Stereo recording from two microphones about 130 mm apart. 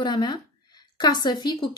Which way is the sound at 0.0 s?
35° left (ahead or behind).